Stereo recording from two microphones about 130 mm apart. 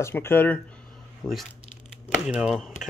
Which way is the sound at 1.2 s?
Centre (ahead or behind).